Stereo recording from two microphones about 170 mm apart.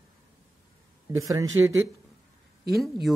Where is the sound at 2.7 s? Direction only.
Centre (ahead or behind).